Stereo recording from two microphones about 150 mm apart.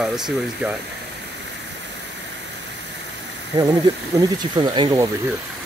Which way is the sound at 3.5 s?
25° right (ahead or behind).